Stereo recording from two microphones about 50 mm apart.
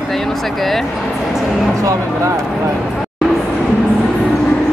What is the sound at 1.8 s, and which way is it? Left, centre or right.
Speech, right.